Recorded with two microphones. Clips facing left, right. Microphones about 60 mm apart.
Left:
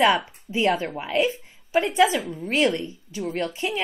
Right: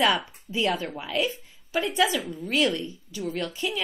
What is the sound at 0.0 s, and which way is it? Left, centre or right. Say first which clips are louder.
A woman's voice: left 4 dB; left.